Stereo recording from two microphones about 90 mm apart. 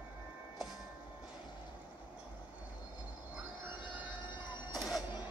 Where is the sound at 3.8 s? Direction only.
60° left (ahead or behind).